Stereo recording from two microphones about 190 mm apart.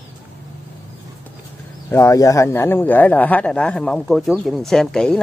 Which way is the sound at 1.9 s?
15° left (ahead or behind).